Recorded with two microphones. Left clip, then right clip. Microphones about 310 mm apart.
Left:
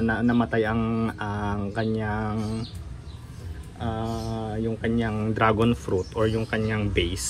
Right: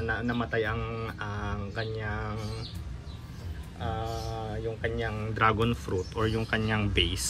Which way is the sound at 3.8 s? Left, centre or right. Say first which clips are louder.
Left 3 dB; left.